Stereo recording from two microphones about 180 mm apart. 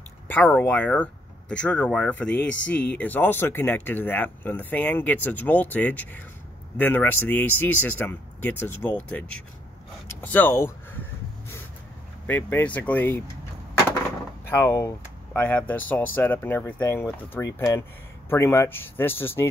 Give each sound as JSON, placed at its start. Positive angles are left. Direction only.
{"t": 0.3, "sound": "speech", "side_deg": 10}
{"t": 10.2, "sound": "speech", "side_deg": 10}
{"t": 12.3, "sound": "speech", "side_deg": 10}
{"t": 14.5, "sound": "speech", "side_deg": 15}